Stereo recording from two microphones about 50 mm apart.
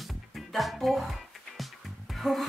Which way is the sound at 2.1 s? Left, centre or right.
Centre.